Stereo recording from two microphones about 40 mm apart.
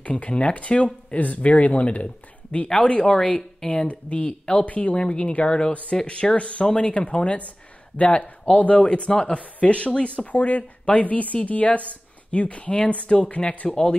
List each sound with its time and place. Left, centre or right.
0.0 s a woman's voice: left
10.3 s a woman's voice: left
13.7 s speech: centre